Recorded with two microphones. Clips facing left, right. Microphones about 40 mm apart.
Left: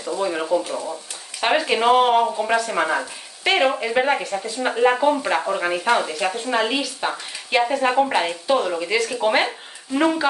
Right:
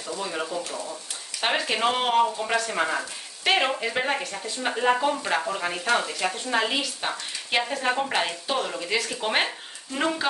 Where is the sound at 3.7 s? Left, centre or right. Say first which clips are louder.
Left 6 dB; centre.